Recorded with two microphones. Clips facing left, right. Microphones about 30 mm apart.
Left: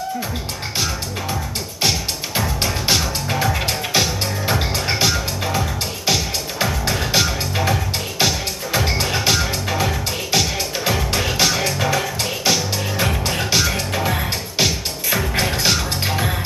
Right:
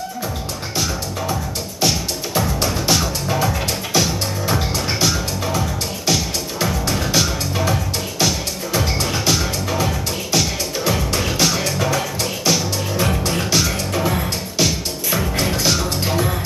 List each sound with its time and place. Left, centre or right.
1.9 s music: centre